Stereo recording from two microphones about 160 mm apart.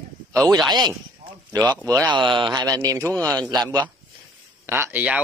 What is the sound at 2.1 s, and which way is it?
A man's voice, 30° right (ahead or behind).